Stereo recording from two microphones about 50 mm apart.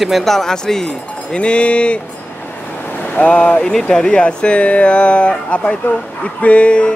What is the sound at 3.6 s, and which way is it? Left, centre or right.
Speech, centre.